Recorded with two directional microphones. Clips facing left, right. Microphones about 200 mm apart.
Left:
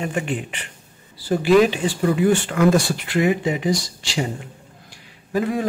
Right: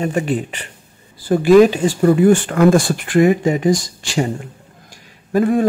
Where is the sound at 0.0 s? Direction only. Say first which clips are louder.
Right 6 dB; 40° right (ahead or behind).